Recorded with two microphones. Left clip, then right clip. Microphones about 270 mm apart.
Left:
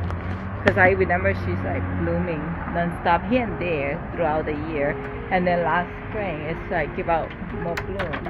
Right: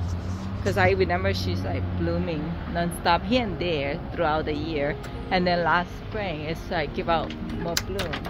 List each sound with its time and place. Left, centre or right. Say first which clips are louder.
0.7 s speech: left 2 dB; centre
3.5 s speech: left 2 dB; right
3.8 s speech: left 2 dB; centre